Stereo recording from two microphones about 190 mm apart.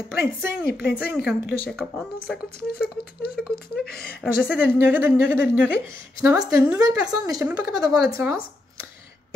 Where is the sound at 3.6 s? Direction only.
55° left (ahead or behind).